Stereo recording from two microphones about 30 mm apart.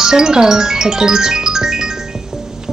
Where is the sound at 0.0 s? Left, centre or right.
Right.